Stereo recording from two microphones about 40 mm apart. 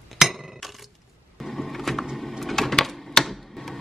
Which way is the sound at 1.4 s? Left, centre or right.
Centre.